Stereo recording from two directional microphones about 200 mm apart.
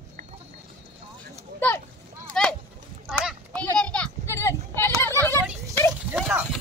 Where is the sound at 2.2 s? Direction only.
5° left (ahead or behind).